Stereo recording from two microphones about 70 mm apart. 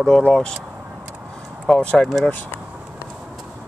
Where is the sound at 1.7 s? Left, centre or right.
Centre.